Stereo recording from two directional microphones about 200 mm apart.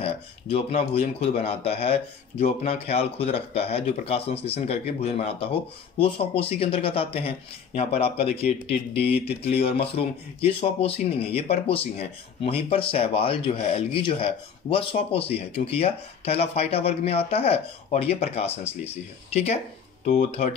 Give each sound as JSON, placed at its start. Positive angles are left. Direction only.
{"t": 0.0, "sound": "speech", "side_deg": 30}